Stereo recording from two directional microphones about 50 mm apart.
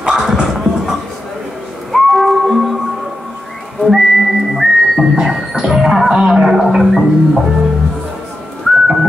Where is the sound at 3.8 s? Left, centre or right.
Centre.